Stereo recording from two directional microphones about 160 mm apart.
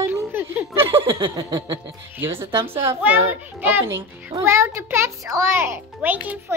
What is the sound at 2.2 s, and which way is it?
A child's voice, 15° right (ahead or behind).